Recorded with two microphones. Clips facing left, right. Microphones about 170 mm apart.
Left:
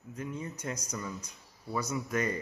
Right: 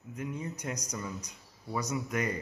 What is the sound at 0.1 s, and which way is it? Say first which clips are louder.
Speech: right 1 dB; 15° right (ahead or behind).